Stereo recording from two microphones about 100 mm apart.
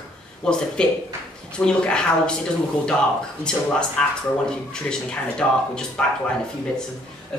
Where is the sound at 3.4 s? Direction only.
10° left (ahead or behind).